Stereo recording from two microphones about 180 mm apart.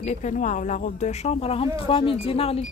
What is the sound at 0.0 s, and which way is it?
Speech, 40° left (ahead or behind).